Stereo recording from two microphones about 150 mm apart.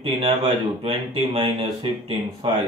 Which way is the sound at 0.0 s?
40° right (ahead or behind).